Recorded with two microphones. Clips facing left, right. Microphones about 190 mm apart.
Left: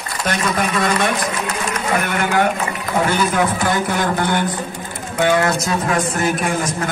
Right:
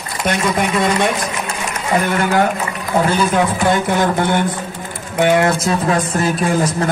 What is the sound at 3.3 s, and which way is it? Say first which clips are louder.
A man's voice: right 3 dB; 25° right (ahead or behind).